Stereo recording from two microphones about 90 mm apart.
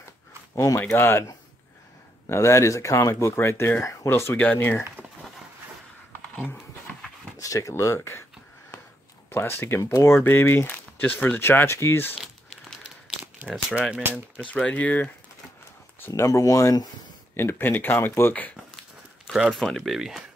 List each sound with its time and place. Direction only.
0.7 s speech: 25° left (ahead or behind)
6.3 s speech: 15° left (ahead or behind)
7.3 s speech: 40° left (ahead or behind)
9.3 s speech: 25° left (ahead or behind)
9.8 s speech: 35° left (ahead or behind)
13.2 s speech: 20° right (ahead or behind)
14.5 s speech: 15° left (ahead or behind)
16.1 s speech: 40° left (ahead or behind)
17.4 s speech: 25° left (ahead or behind)
19.3 s speech: 5° right (ahead or behind)